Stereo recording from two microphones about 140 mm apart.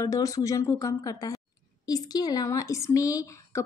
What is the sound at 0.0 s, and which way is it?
A woman's voice, 25° left (ahead or behind).